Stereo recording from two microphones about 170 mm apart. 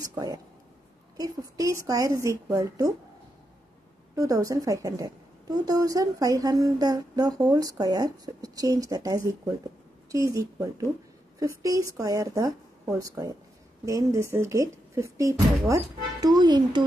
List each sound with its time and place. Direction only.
0.0 s a woman's voice: 20° right (ahead or behind)
4.1 s a woman's voice: 20° right (ahead or behind)